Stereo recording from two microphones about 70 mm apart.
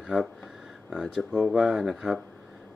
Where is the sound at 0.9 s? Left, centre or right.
Centre.